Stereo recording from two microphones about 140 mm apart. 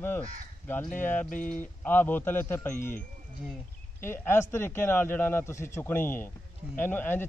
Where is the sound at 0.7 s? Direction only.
15° left (ahead or behind).